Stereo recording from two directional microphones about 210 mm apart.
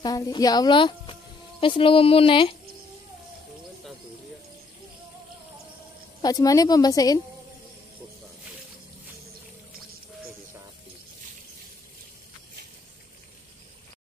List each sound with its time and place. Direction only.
0.0 s a woman's voice: 20° left (ahead or behind)
6.2 s a woman's voice: 15° left (ahead or behind)